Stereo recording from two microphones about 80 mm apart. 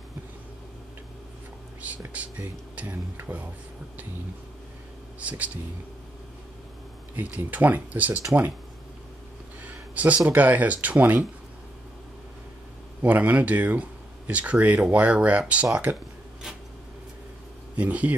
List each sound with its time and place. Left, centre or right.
1.8 s speech: centre
5.2 s speech: centre
7.2 s speech: centre
9.7 s speech: centre
13.0 s speech: centre
17.7 s speech: centre